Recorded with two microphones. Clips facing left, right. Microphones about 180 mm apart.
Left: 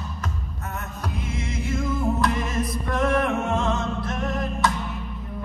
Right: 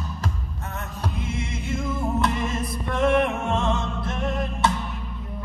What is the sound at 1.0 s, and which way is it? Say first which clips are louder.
Music: right 1 dB; 25° right (ahead or behind).